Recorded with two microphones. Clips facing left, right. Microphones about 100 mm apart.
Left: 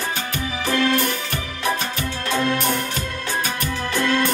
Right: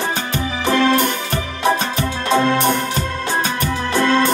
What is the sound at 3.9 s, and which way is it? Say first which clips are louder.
Music: right 5 dB; 25° right (ahead or behind).